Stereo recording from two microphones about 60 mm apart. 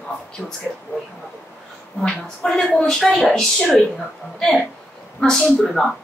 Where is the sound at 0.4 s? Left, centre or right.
Centre.